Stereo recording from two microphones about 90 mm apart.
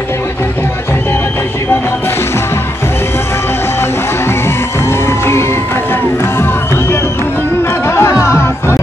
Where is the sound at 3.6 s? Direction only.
25° left (ahead or behind).